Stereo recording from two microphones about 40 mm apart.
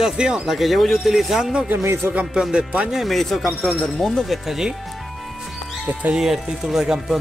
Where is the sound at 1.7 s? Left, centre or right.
Right.